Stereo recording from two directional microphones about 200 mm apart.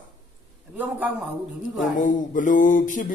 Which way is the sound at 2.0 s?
40° left (ahead or behind).